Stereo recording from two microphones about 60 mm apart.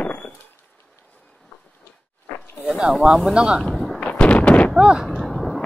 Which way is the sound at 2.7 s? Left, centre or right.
Centre.